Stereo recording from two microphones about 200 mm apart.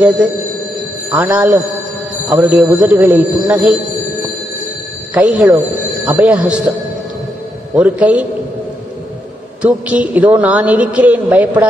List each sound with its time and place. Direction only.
1.1 s a man's voice: 5° right (ahead or behind)
5.1 s a man's voice: 5° right (ahead or behind)
7.7 s a man's voice: 5° right (ahead or behind)
9.6 s a man's voice: 5° right (ahead or behind)